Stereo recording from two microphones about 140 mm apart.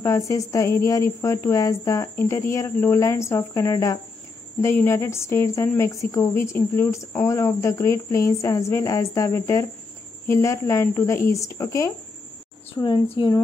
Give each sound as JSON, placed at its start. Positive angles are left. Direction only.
{"t": 0.0, "sound": "speech", "side_deg": 20}
{"t": 12.8, "sound": "speech", "side_deg": 35}